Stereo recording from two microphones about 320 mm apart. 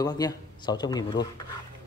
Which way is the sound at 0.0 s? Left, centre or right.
Centre.